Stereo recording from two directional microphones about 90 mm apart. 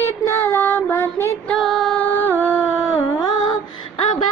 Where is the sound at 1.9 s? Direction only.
20° left (ahead or behind).